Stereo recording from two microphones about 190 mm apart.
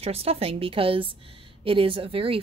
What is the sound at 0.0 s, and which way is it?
A woman's voice, 30° right (ahead or behind).